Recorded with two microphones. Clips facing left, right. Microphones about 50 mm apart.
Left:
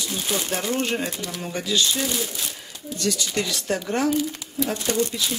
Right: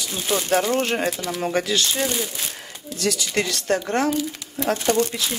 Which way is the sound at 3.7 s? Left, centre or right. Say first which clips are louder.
Right 1 dB; centre.